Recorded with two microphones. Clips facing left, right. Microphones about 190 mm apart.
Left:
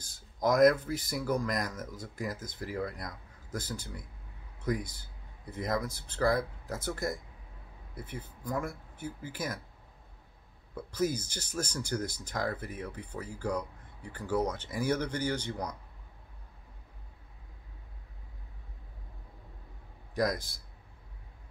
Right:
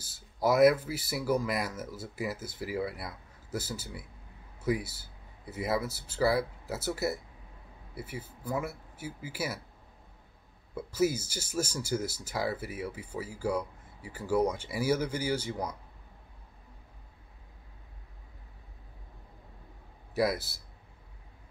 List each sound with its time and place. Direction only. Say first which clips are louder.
0.0 s speech: right 1 dB; 5° right (ahead or behind)
10.7 s speech: right 3 dB; 5° right (ahead or behind)
20.2 s speech: right 2 dB; 5° right (ahead or behind)